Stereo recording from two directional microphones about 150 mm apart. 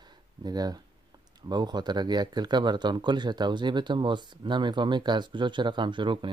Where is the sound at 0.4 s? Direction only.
25° right (ahead or behind).